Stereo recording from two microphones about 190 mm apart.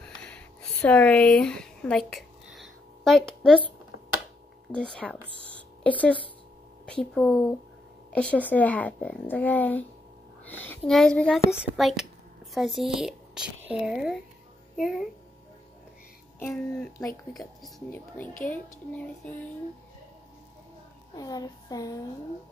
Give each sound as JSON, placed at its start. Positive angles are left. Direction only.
{"t": 0.0, "sound": "a sound", "side_deg": 5}
{"t": 4.7, "sound": "speech", "side_deg": 5}
{"t": 5.4, "sound": "a sound", "side_deg": 5}
{"t": 6.9, "sound": "a woman's voice", "side_deg": 0}
{"t": 16.3, "sound": "a woman's voice", "side_deg": 10}
{"t": 21.2, "sound": "speech", "side_deg": 20}